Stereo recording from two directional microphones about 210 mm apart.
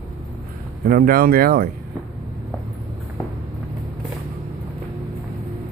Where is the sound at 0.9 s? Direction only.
45° right (ahead or behind).